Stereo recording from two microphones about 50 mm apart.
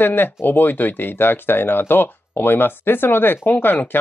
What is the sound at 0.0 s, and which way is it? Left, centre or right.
Speech, left.